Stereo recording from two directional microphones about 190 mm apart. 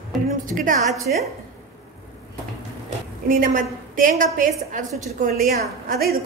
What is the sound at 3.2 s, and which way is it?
A woman's voice, 45° right (ahead or behind).